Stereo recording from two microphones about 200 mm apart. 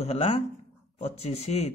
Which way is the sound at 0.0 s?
30° left (ahead or behind).